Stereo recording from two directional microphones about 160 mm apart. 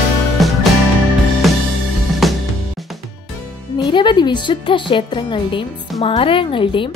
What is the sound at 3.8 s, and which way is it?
Speech, 30° left (ahead or behind).